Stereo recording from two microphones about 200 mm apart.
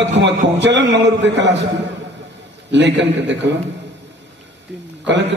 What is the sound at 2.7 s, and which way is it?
Speech, 60° right (ahead or behind).